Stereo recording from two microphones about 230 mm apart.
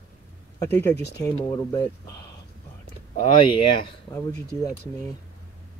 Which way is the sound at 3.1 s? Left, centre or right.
Left.